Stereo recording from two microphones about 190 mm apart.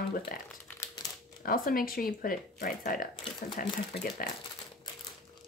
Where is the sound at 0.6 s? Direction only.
15° left (ahead or behind).